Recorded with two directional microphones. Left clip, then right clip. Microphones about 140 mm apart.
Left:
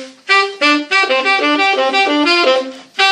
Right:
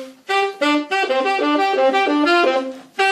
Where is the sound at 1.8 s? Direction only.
20° right (ahead or behind).